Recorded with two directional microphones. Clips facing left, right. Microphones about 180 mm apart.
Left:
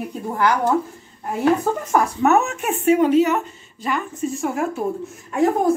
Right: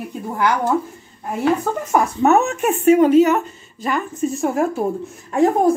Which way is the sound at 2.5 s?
45° right (ahead or behind).